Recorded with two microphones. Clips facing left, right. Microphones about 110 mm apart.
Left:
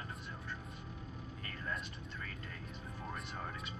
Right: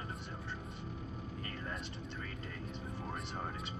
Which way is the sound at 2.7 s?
30° right (ahead or behind).